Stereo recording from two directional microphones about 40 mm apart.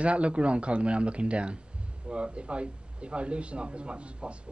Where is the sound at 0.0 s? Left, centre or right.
Right.